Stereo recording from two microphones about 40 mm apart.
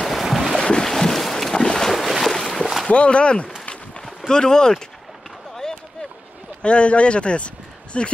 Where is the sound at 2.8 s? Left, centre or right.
Left.